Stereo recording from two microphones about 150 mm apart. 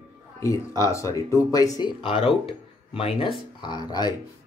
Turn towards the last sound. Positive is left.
turn(degrees=25)  # may be behind; listen again after turning